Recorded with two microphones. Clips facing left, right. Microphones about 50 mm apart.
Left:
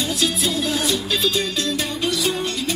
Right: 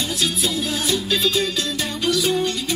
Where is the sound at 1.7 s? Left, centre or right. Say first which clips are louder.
Right 1 dB; centre.